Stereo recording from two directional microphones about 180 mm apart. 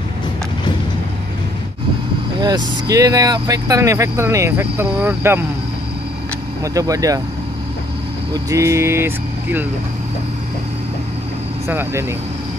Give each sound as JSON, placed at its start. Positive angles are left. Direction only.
{"t": 2.4, "sound": "speech", "side_deg": -20}
{"t": 6.6, "sound": "speech", "side_deg": -20}
{"t": 8.3, "sound": "speech", "side_deg": -20}
{"t": 11.6, "sound": "speech", "side_deg": -15}